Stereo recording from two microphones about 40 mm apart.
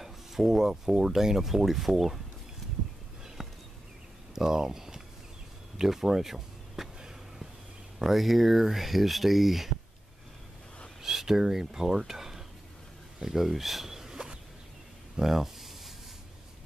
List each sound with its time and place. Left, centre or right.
0.0 s speech: centre
3.4 s a sound: centre
4.4 s speech: centre
8.0 s speech: centre
11.0 s speech: centre
15.1 s a sound: centre